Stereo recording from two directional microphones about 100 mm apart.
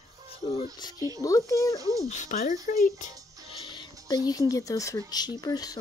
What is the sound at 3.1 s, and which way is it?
Music, 35° right (ahead or behind).